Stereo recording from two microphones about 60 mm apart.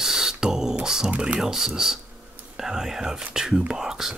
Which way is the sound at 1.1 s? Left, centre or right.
Right.